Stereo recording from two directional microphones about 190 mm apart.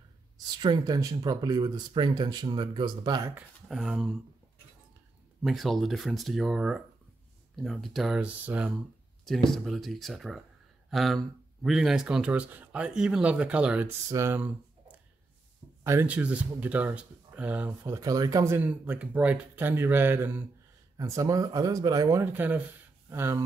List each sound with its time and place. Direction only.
0.6 s speech: 20° right (ahead or behind)
3.3 s speech: centre (ahead or behind)
5.4 s speech: centre (ahead or behind)